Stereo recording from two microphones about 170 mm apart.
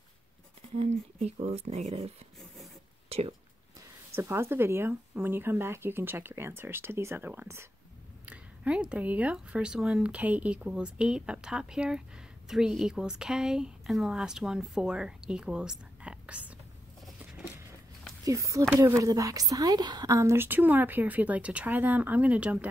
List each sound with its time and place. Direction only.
0.7 s speech: 35° right (ahead or behind)
3.1 s a sound: 35° right (ahead or behind)
4.1 s a woman's voice: 15° right (ahead or behind)
17.2 s patter: 10° right (ahead or behind)
18.2 s a woman's voice: 20° right (ahead or behind)